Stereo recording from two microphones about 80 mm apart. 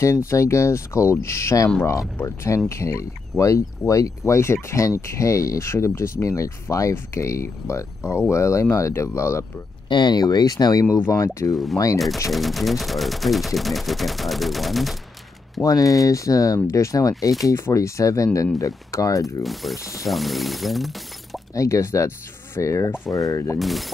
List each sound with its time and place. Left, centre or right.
0.0 s speech: left
9.8 s speech: left
12.3 s gunshot: centre
15.6 s speech: left
19.4 s gunshot: centre
19.8 s speech: left
20.1 s gunshot: centre
21.5 s speech: left
23.6 s gunshot: centre